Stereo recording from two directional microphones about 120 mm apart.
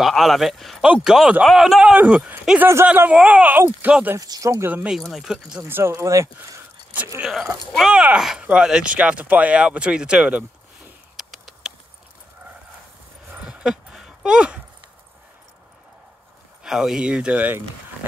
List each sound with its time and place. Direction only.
0.0 s speech: centre (ahead or behind)
4.2 s speech: 30° right (ahead or behind)
4.9 s speech: centre (ahead or behind)
5.6 s speech: 20° right (ahead or behind)
7.2 s speech: 5° right (ahead or behind)
11.1 s a sound: 5° right (ahead or behind)
13.3 s dog: 10° right (ahead or behind)
16.6 s speech: 5° right (ahead or behind)